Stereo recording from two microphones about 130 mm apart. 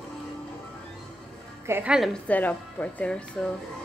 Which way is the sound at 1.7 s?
15° right (ahead or behind).